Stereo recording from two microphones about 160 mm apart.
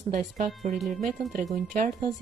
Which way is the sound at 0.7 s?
Centre (ahead or behind).